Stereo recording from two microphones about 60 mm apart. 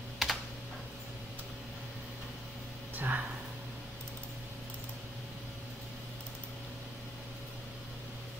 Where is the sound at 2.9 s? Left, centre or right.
Right.